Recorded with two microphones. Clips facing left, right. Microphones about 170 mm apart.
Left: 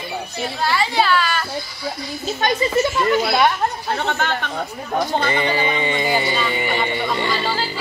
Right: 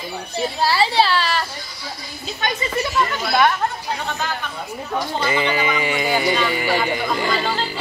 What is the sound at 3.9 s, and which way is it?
Speech, 70° left (ahead or behind).